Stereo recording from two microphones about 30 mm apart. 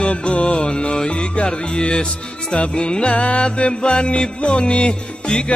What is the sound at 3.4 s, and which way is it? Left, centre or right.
Music, left.